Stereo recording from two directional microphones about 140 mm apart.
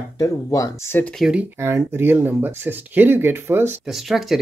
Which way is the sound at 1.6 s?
15° right (ahead or behind).